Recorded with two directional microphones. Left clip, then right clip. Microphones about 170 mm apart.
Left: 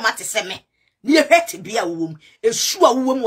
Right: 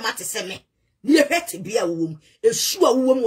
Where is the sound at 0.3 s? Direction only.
10° right (ahead or behind).